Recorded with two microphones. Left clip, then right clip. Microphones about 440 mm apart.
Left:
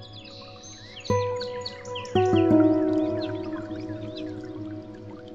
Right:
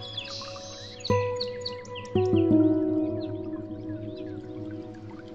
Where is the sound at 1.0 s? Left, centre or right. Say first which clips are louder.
Left 1 dB; centre.